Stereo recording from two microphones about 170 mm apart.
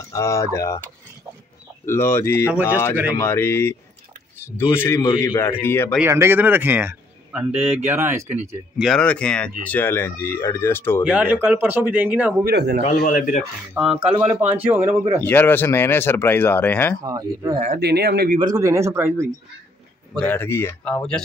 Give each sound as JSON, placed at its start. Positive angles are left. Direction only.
{"t": 0.1, "sound": "speech", "side_deg": 20}
{"t": 1.9, "sound": "speech", "side_deg": 15}
{"t": 4.7, "sound": "speech", "side_deg": 15}
{"t": 5.9, "sound": "speech", "side_deg": -15}
{"t": 8.7, "sound": "speech", "side_deg": 0}
{"t": 11.1, "sound": "speech", "side_deg": -10}
{"t": 12.4, "sound": "speech", "side_deg": -75}
{"t": 12.9, "sound": "speech", "side_deg": 55}
{"t": 14.1, "sound": "speech", "side_deg": -10}
{"t": 15.2, "sound": "speech", "side_deg": 10}
{"t": 17.0, "sound": "speech", "side_deg": -20}
{"t": 17.7, "sound": "speech", "side_deg": -75}
{"t": 18.4, "sound": "speech", "side_deg": -20}
{"t": 20.2, "sound": "speech", "side_deg": 10}